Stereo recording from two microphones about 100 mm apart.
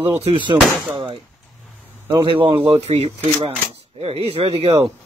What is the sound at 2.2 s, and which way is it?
Speech, 60° right (ahead or behind).